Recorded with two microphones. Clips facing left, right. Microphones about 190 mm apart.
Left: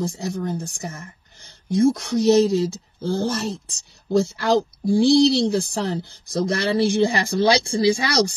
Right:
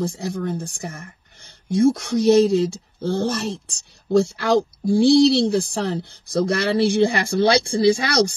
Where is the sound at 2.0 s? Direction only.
55° right (ahead or behind).